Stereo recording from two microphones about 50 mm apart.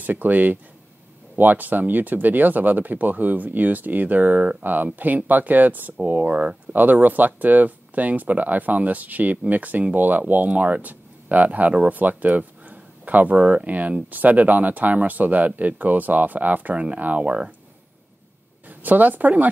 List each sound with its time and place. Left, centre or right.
0.0 s speech: right; by 17.5 s centre
18.7 s a woman's voice: right